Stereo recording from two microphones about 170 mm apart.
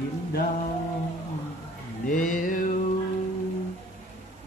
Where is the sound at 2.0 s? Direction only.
50° left (ahead or behind).